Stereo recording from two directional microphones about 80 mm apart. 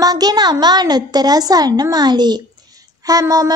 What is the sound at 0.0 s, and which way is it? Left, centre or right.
Child singing, right.